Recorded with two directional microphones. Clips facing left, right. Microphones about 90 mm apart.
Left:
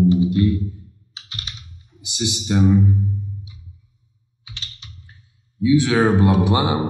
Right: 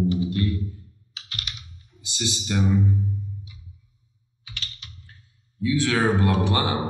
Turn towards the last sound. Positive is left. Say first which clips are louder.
# left 5 dB
turn(degrees=15)  # may be behind; listen again after turning